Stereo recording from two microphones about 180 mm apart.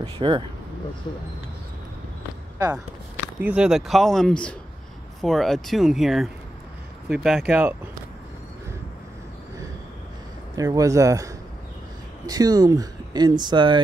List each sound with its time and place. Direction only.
0.0 s speech: 30° right (ahead or behind)
3.3 s speech: 5° right (ahead or behind)
10.5 s speech: 20° right (ahead or behind)